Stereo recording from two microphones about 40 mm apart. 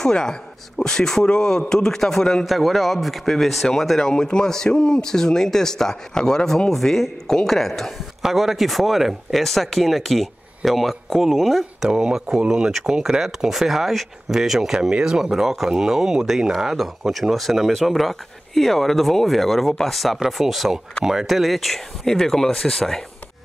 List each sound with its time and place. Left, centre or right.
0.0 s speech: centre
2.4 s speech: centre
4.0 s speech: centre
8.2 s speech: centre
11.9 s speech: centre
14.7 s speech: centre